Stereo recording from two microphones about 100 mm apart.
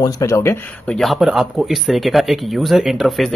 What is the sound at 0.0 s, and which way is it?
Speech, 30° left (ahead or behind).